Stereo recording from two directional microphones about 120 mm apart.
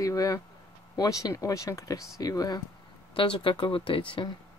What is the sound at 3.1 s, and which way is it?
Speech, 45° left (ahead or behind).